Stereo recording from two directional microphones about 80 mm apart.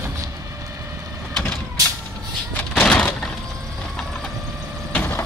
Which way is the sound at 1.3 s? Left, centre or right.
Centre.